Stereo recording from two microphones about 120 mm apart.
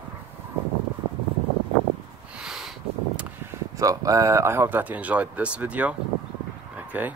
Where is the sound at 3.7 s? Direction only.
30° right (ahead or behind).